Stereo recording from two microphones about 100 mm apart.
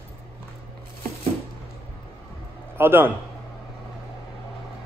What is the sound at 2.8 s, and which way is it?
Speech, 20° right (ahead or behind).